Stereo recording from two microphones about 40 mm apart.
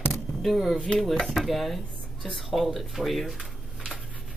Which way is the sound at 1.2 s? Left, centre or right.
Centre.